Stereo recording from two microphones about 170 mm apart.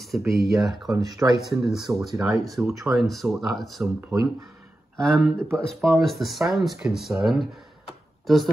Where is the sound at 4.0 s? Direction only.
15° right (ahead or behind).